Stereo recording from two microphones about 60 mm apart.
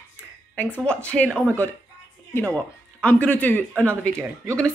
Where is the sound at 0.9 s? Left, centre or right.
Centre.